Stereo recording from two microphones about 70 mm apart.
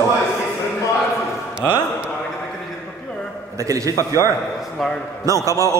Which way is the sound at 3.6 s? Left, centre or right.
Right.